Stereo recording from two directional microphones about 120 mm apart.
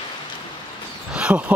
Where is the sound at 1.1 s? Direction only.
10° right (ahead or behind).